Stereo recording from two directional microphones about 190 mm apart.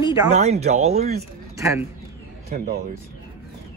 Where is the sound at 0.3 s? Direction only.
35° right (ahead or behind).